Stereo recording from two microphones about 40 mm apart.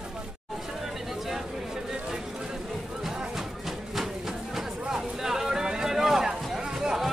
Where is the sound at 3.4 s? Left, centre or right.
Centre.